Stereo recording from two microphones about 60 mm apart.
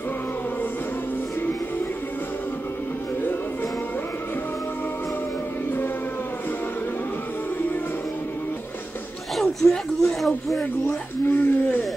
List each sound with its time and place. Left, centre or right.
9.4 s speech: centre
11.2 s speech: left